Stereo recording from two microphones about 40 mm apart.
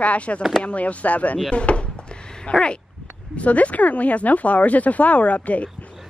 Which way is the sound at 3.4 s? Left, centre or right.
Left.